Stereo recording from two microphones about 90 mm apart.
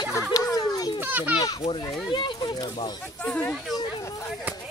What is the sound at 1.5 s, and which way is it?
Speech, 90° left.